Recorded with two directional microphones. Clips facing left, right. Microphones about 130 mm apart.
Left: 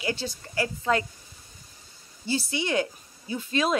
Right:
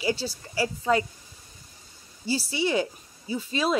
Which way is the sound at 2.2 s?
5° right (ahead or behind).